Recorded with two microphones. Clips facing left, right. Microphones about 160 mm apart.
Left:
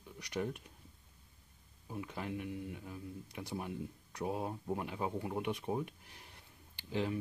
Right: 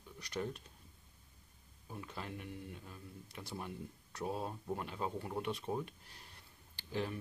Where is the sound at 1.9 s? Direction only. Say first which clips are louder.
Left 5 dB; 15° left (ahead or behind).